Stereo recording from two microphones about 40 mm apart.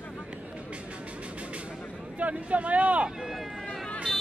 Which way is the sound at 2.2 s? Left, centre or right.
Right.